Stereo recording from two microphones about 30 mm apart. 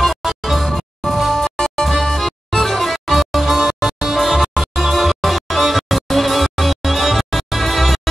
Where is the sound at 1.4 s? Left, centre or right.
Centre.